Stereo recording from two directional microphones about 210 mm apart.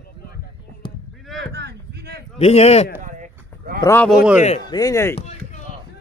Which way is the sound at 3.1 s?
40° right (ahead or behind).